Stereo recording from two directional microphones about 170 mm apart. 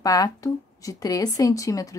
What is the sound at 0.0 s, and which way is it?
A woman's voice, 20° left (ahead or behind).